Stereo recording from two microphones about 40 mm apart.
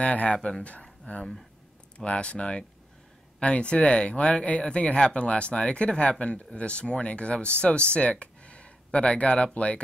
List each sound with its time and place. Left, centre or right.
0.0 s speech: left